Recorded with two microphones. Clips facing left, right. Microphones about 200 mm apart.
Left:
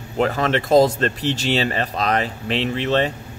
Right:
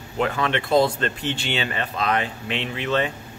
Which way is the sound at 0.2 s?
40° left (ahead or behind).